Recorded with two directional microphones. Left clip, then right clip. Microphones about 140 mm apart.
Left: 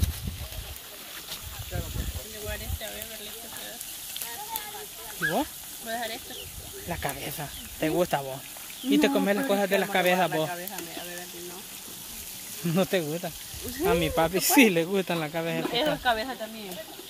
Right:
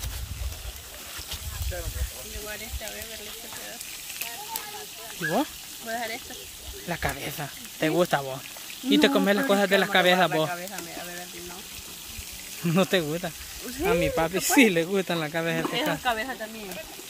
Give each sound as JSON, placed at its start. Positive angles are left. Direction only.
{"t": 5.9, "sound": "speech", "side_deg": -20}
{"t": 12.6, "sound": "speech", "side_deg": -25}
{"t": 13.8, "sound": "speech", "side_deg": 0}
{"t": 15.3, "sound": "speech", "side_deg": -25}
{"t": 16.0, "sound": "speech", "side_deg": 20}